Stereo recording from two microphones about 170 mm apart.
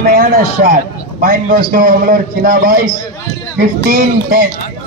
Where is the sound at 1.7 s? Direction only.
55° right (ahead or behind).